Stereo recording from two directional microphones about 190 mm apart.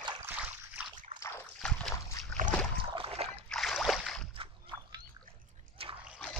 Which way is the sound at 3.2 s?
5° left (ahead or behind).